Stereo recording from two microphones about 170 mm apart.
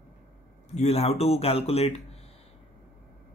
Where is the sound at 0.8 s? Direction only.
35° left (ahead or behind).